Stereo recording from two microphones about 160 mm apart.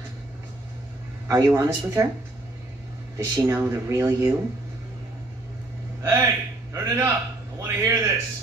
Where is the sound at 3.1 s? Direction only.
20° right (ahead or behind).